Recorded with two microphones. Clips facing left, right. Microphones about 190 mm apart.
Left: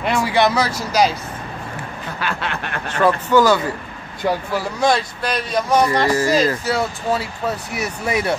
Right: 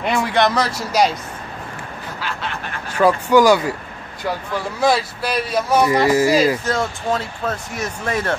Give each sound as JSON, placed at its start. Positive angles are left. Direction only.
{"t": 0.0, "sound": "speech", "side_deg": 0}
{"t": 2.1, "sound": "quack", "side_deg": 65}
{"t": 2.9, "sound": "speech", "side_deg": -10}
{"t": 6.6, "sound": "speech", "side_deg": 10}